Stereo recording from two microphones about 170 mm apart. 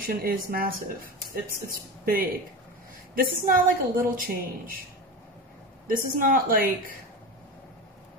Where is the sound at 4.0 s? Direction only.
55° right (ahead or behind).